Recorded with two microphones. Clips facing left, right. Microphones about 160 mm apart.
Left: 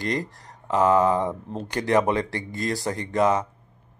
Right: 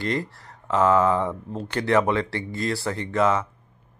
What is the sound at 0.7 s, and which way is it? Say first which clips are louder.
Speech: even; 15° left (ahead or behind).